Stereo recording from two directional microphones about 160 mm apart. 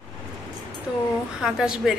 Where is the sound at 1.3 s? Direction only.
5° right (ahead or behind).